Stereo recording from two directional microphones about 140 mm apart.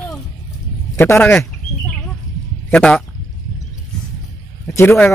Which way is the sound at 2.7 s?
5° left (ahead or behind).